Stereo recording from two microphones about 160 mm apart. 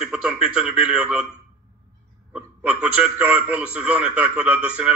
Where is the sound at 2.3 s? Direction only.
5° right (ahead or behind).